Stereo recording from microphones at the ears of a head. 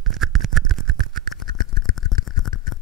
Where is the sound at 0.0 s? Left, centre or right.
Right.